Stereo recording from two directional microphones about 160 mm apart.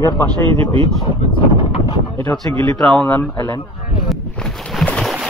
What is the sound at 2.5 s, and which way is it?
Speech, 15° left (ahead or behind).